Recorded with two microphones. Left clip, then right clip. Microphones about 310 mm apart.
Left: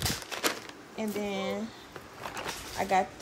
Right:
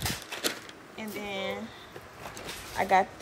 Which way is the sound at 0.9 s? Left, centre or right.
Centre.